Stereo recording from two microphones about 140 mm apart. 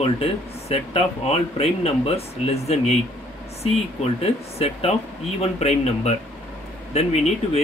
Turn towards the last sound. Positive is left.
turn(degrees=50)  # may be behind; listen again after turning